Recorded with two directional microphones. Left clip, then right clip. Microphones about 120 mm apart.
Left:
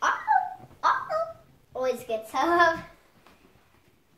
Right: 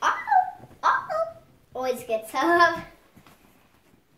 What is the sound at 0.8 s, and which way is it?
Dog, 55° right (ahead or behind).